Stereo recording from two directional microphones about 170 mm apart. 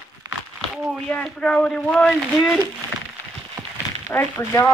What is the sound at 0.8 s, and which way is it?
Speech, centre (ahead or behind).